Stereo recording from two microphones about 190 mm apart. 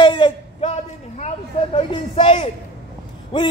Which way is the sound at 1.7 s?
30° left (ahead or behind).